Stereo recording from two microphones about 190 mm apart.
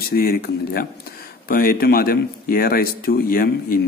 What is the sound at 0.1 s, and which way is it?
A man's voice, 50° left (ahead or behind).